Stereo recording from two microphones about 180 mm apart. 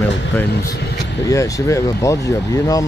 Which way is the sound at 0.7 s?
65° left (ahead or behind).